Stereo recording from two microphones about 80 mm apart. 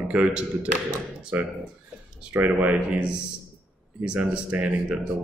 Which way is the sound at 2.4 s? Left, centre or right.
Right.